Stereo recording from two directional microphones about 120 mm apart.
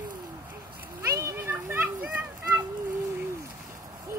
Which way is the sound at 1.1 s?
25° right (ahead or behind).